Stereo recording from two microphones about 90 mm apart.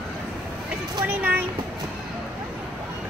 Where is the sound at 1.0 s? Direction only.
25° right (ahead or behind).